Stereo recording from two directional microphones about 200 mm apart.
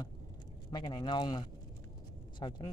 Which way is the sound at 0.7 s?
20° left (ahead or behind).